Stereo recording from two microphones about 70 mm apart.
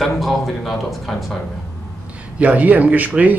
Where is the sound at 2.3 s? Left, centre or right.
Right.